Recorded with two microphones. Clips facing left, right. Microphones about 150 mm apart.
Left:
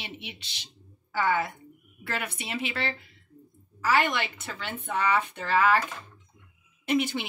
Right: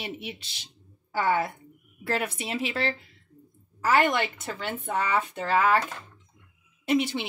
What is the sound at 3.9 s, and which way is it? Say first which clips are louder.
Speech: right 3 dB; 45° right (ahead or behind).